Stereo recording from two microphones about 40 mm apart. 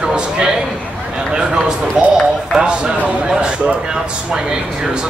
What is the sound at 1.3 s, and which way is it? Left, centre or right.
Speech, right.